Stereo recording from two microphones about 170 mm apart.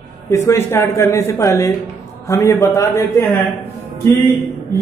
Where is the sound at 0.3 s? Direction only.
15° left (ahead or behind).